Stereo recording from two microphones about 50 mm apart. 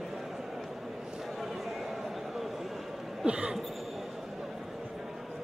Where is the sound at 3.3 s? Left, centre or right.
Centre.